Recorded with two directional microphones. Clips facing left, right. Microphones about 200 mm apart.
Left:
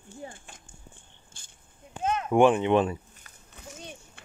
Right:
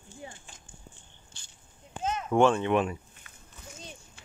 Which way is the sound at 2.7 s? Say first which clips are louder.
Left 3 dB; 35° left (ahead or behind).